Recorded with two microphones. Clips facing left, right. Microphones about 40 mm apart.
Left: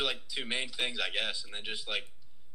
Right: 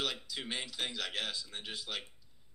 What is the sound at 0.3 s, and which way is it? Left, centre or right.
Speech, left.